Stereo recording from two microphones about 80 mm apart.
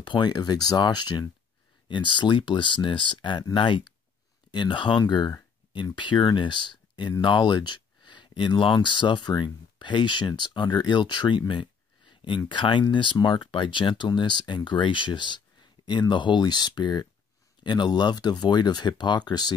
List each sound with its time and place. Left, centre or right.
0.0 s a sound: left
0.3 s speech: left
1.9 s speech: left
3.5 s speech: left
4.5 s speech: left
5.9 s speech: left